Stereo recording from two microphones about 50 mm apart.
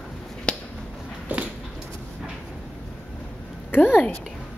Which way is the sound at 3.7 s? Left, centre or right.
Left.